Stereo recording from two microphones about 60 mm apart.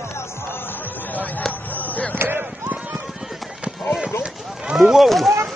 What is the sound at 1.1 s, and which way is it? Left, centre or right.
Speech, left.